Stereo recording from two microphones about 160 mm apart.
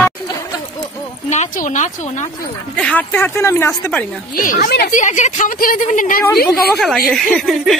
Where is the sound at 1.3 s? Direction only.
50° left (ahead or behind).